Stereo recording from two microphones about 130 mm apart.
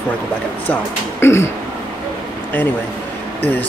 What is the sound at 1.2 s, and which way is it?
Speech, 20° left (ahead or behind).